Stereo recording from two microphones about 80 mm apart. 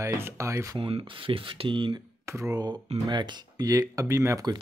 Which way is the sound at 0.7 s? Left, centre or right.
Right.